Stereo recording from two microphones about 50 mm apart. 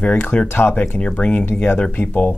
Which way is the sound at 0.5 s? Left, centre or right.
Left.